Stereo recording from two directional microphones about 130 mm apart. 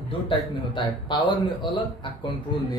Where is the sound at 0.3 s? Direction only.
40° left (ahead or behind).